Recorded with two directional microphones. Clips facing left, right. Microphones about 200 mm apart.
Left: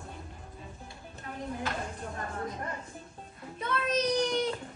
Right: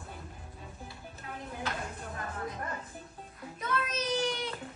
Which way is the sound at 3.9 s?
40° left (ahead or behind).